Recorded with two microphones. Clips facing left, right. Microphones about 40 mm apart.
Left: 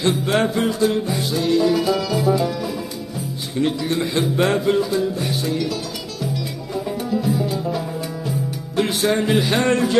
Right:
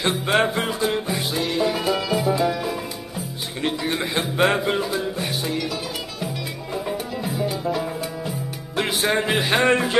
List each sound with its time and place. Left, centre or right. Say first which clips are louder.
0.0 s speech: left 1 dB; centre
1.5 s music: left 6 dB; right
3.5 s speech: left 4 dB; centre
5.5 s speech: left 3 dB; centre
8.7 s music: left 3 dB; centre
9.0 s speech: left 2 dB; right